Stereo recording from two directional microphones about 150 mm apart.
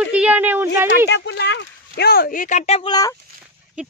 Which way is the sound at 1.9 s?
90° left.